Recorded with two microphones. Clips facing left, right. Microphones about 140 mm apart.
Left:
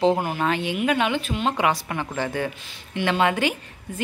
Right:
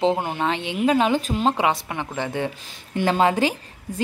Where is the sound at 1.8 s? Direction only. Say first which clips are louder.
Left 1 dB; 20° right (ahead or behind).